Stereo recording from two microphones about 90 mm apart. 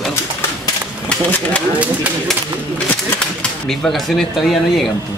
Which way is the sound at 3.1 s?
5° left (ahead or behind).